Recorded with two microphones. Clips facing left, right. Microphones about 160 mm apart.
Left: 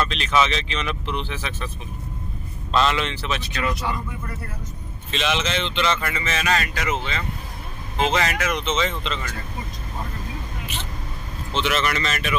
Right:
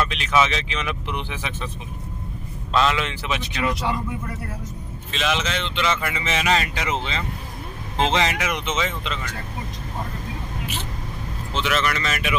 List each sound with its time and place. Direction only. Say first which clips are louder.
0.0 s speech: even; 10° right (ahead or behind)
2.7 s speech: even; 5° right (ahead or behind)
5.1 s speech: left 1 dB; centre (ahead or behind)
11.5 s speech: left 1 dB; centre (ahead or behind)